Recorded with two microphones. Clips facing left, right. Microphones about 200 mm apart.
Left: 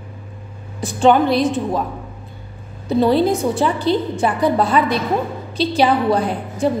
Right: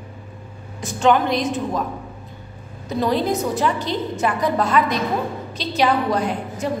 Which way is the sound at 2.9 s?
30° left (ahead or behind).